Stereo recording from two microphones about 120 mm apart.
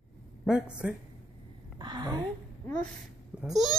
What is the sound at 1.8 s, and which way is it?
Speech, 40° right (ahead or behind).